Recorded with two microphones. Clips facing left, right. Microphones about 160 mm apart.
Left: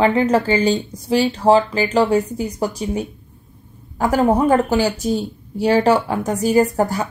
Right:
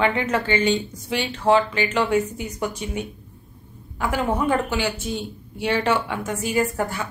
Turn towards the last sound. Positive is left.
turn(degrees=40)  # may be behind; listen again after turning